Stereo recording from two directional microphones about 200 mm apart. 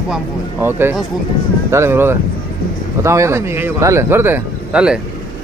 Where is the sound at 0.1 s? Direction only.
10° right (ahead or behind).